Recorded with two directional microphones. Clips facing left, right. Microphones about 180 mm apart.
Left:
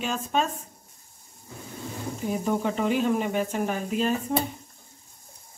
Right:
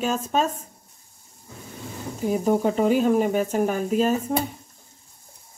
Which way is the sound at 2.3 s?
40° right (ahead or behind).